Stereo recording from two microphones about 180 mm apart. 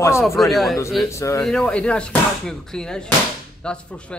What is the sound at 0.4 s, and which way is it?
Speech, centre (ahead or behind).